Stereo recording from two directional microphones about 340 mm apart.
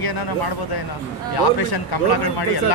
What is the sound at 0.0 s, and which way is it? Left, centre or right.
A man's voice, left.